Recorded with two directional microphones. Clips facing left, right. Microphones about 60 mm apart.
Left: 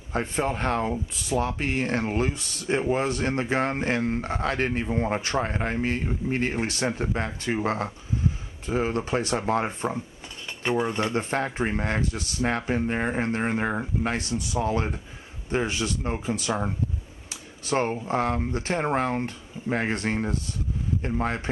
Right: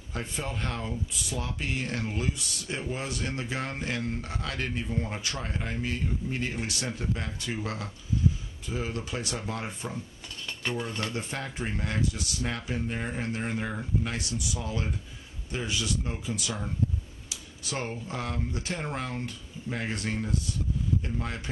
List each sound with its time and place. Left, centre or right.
0.1 s speech: left
10.6 s speech: left
11.1 s speech: left